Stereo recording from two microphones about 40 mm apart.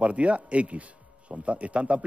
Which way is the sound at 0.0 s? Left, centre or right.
Right.